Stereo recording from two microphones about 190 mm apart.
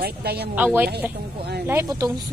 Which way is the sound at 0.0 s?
55° right (ahead or behind).